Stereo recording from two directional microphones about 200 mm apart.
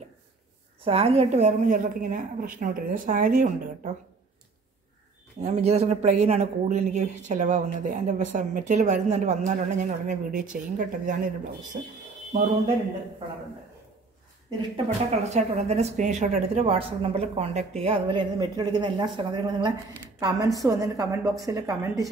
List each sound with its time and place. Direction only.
0.8 s speech: 30° right (ahead or behind)
5.4 s speech: 30° right (ahead or behind)
15.0 s a woman's voice: 35° right (ahead or behind); by 22.1 s 15° right (ahead or behind)